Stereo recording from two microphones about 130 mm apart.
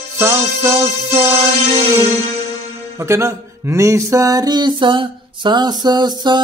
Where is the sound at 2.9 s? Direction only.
20° right (ahead or behind).